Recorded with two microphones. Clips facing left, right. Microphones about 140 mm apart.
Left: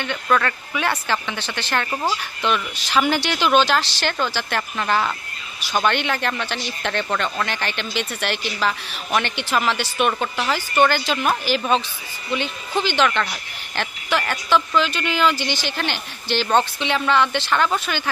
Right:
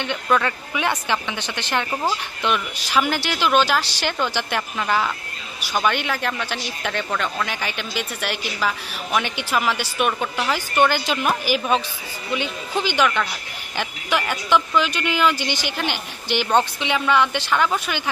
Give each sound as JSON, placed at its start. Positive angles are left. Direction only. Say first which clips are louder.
{"t": 0.0, "sound": "speech", "louder": "even", "side_deg": -15}